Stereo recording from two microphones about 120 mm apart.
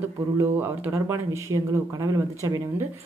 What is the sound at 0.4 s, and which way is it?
Speech, 20° right (ahead or behind).